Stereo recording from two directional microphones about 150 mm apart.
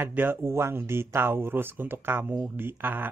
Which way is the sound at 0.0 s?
15° right (ahead or behind).